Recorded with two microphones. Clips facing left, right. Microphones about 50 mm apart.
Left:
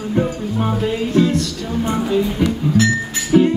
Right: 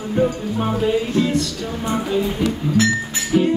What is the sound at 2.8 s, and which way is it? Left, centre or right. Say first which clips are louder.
Music: left 2 dB; centre.